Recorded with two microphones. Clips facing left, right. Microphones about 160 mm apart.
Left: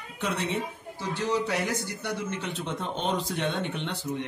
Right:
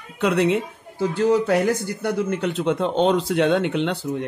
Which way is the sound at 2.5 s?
75° right (ahead or behind).